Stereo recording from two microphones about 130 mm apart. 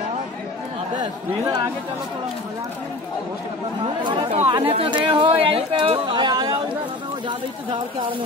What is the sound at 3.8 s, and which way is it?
Speech, 35° right (ahead or behind).